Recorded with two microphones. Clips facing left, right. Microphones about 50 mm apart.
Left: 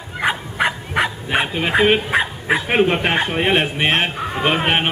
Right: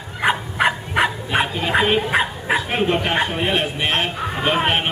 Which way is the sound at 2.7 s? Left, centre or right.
Left.